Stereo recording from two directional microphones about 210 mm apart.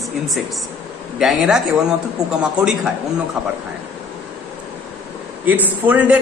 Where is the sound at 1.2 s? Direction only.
5° right (ahead or behind).